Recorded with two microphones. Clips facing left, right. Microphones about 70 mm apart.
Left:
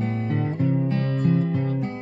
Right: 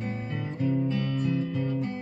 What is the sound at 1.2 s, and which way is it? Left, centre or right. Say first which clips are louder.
Music: left 5 dB; left.